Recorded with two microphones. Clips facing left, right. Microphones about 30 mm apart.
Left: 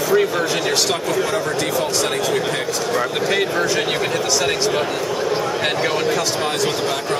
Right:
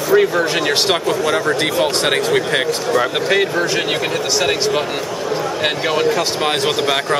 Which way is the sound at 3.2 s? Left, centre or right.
Centre.